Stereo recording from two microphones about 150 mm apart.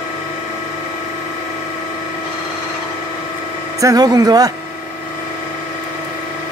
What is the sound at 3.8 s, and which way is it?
Speech, 25° right (ahead or behind).